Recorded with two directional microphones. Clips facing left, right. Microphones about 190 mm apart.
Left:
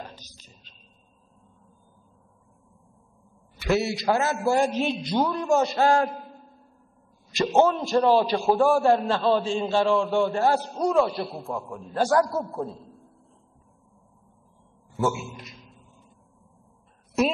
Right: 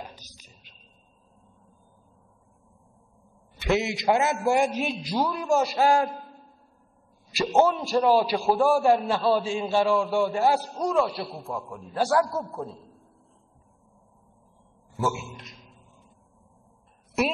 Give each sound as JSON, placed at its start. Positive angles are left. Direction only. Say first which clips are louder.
{"t": 0.0, "sound": "a sound", "louder": "left 1 dB", "side_deg": -15}
{"t": 3.5, "sound": "a man's voice", "louder": "left 1 dB", "side_deg": -20}
{"t": 4.6, "sound": "a man's voice", "louder": "left 3 dB", "side_deg": 0}
{"t": 7.3, "sound": "a man's voice", "louder": "left 1 dB", "side_deg": 0}
{"t": 10.7, "sound": "a man's voice", "louder": "left 2 dB", "side_deg": 0}
{"t": 15.0, "sound": "a man's voice", "louder": "left 2 dB", "side_deg": 0}